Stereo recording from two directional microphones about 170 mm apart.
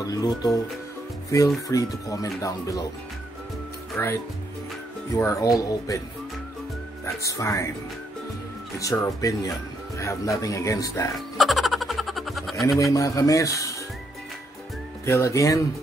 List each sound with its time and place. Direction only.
0.0 s speech: 20° left (ahead or behind)
1.7 s speech: 20° left (ahead or behind)
3.9 s speech: 15° left (ahead or behind)
7.2 s speech: 20° left (ahead or behind)
8.7 s speech: 20° left (ahead or behind)
11.1 s music: centre (ahead or behind)
12.9 s speech: 20° left (ahead or behind)
15.0 s speech: 15° left (ahead or behind)